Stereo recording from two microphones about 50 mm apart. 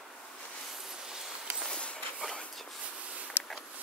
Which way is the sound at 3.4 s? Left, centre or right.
Left.